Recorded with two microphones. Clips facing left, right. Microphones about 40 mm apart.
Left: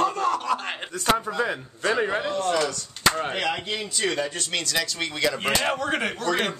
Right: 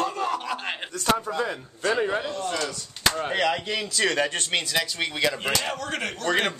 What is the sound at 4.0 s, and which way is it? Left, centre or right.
Speech, right.